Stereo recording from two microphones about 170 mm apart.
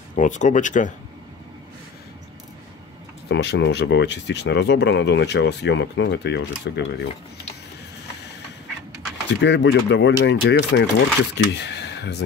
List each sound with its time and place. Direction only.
0.1 s speech: 45° left (ahead or behind)
3.3 s speech: 85° left
9.4 s speech: 90° left